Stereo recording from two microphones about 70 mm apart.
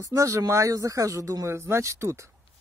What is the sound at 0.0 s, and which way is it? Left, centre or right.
Speech, right.